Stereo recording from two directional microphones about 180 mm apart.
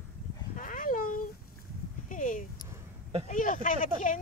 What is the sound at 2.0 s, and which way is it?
Speech, 45° left (ahead or behind).